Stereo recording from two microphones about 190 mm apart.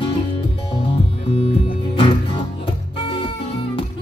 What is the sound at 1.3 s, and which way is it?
Music, 30° left (ahead or behind).